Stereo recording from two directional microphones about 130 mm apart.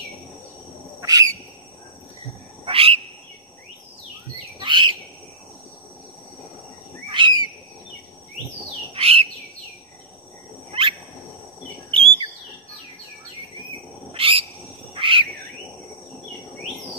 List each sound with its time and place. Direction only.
1.0 s owl: 30° right (ahead or behind)
2.6 s frog: 45° right (ahead or behind)
4.6 s bird: 40° right (ahead or behind)
7.1 s bird: 40° right (ahead or behind)
8.9 s bird: 50° right (ahead or behind)
10.7 s bird: 45° right (ahead or behind)
14.1 s owl: 45° right (ahead or behind)
15.0 s frog: 40° right (ahead or behind)